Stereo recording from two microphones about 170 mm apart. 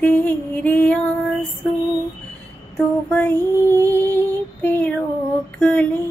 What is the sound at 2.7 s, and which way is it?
Female singing, 10° left (ahead or behind).